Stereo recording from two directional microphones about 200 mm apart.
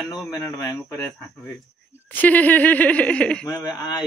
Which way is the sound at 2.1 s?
10° left (ahead or behind).